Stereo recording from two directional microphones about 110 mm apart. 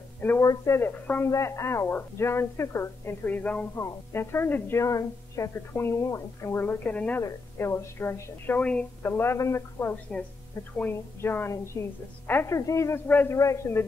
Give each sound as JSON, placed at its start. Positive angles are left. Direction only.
{"t": 0.4, "sound": "a woman's voice", "side_deg": 25}
{"t": 13.1, "sound": "a man's voice", "side_deg": 15}